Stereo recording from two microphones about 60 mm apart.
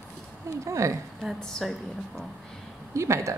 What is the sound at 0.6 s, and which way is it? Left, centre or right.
Speech, right.